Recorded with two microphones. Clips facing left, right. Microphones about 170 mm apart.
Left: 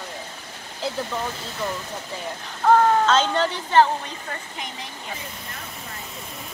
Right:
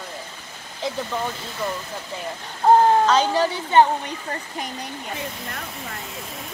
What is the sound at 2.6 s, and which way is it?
Speech, 30° right (ahead or behind).